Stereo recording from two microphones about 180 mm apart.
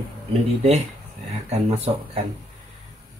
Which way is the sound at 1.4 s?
35° right (ahead or behind).